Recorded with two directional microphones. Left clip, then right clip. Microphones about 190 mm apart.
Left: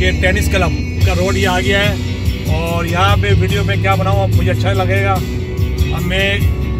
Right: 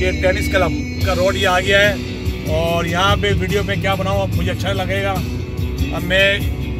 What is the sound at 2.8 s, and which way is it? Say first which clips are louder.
Speech: left 1 dB; 35° right (ahead or behind).